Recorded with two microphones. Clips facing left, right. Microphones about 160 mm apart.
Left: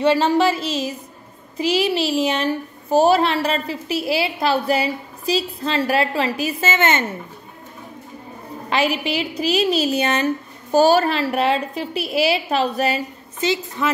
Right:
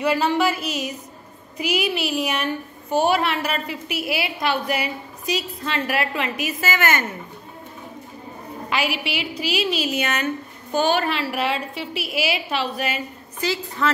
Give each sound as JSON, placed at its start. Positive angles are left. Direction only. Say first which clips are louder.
{"t": 0.0, "sound": "a woman's voice", "louder": "left 4 dB", "side_deg": 30}
{"t": 8.6, "sound": "a woman's voice", "louder": "left 5 dB", "side_deg": 35}
{"t": 13.4, "sound": "speech", "louder": "left 2 dB", "side_deg": 20}